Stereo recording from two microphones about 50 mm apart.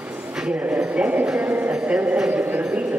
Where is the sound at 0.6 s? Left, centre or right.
Right.